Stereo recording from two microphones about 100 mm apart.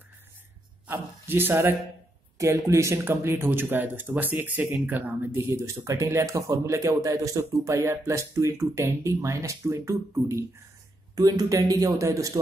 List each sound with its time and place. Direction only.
0.8 s a man's voice: 25° right (ahead or behind)